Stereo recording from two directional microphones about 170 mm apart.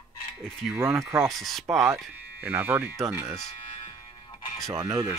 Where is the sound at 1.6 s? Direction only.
10° right (ahead or behind).